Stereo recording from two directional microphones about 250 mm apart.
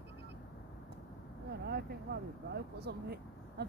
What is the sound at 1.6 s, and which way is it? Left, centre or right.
Speech, right.